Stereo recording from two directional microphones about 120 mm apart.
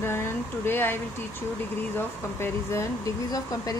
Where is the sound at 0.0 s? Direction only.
20° left (ahead or behind).